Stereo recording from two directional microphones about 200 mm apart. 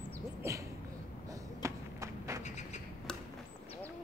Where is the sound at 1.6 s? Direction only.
15° right (ahead or behind).